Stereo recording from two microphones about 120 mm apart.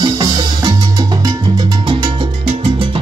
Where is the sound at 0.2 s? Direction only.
40° right (ahead or behind).